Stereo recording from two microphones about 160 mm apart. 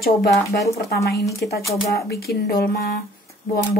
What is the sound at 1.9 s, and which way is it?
Speech, 80° left.